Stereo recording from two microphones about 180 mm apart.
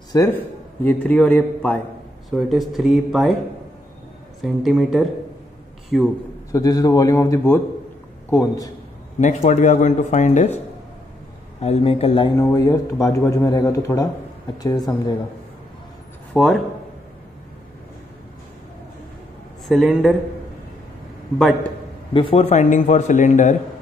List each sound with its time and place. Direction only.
0.1 s a man's voice: 15° left (ahead or behind); by 3.3 s centre (ahead or behind)
4.4 s speech: centre (ahead or behind)
6.5 s a man's voice: 20° left (ahead or behind)
9.2 s a man's voice: 40° left (ahead or behind)
11.6 s a man's voice: 35° left (ahead or behind)
12.4 s a man's voice: 20° left (ahead or behind)
16.3 s speech: centre (ahead or behind)
19.7 s speech: centre (ahead or behind)
22.1 s a man's voice: 30° left (ahead or behind)